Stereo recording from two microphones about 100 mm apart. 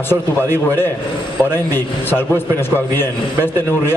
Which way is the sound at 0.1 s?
25° left (ahead or behind).